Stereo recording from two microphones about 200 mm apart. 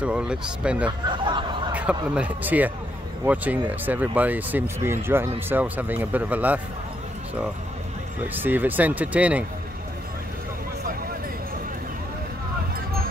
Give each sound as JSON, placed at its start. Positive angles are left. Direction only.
{"t": 0.0, "sound": "speech", "side_deg": -5}
{"t": 1.1, "sound": "a sound", "side_deg": -25}
{"t": 1.7, "sound": "speech", "side_deg": -5}
{"t": 8.4, "sound": "speech", "side_deg": -10}